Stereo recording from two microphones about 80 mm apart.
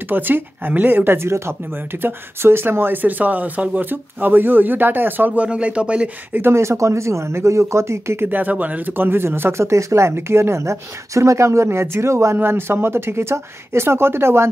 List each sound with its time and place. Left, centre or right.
0.1 s speech: right
6.3 s speech: right